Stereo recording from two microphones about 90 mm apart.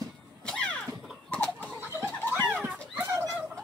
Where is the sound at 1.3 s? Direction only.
15° left (ahead or behind).